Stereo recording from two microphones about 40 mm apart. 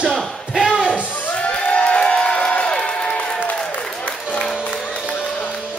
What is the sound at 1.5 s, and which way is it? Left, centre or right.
Crowd, left.